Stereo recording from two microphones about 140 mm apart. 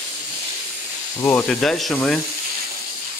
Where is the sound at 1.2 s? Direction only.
5° left (ahead or behind).